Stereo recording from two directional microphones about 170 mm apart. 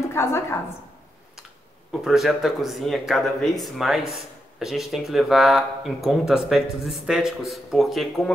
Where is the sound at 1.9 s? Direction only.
Centre (ahead or behind).